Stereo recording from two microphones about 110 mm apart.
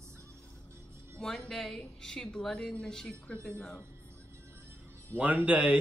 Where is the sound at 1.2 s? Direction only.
5° left (ahead or behind).